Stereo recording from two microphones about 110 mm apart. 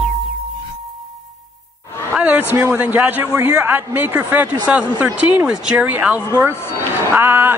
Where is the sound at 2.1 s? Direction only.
15° right (ahead or behind).